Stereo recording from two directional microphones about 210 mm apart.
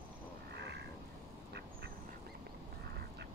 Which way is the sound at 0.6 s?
55° right (ahead or behind).